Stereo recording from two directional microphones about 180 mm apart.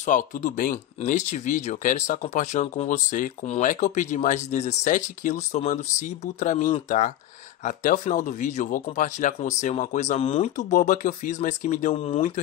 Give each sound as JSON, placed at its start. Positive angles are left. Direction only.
{"t": 0.0, "sound": "speech", "side_deg": 45}